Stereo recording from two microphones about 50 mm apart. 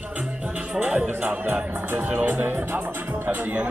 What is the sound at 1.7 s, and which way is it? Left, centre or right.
Speech, right.